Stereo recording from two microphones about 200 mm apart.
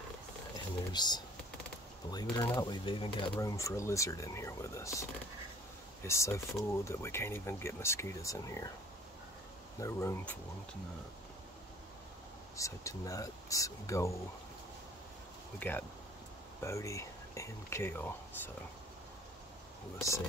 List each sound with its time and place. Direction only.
0.9 s speech: 20° left (ahead or behind)
6.0 s speech: 15° left (ahead or behind)
9.8 s speech: 15° left (ahead or behind)
12.5 s speech: 15° left (ahead or behind)
15.6 s speech: 10° left (ahead or behind)